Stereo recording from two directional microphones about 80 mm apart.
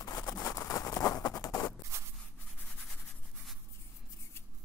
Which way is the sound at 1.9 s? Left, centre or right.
Right.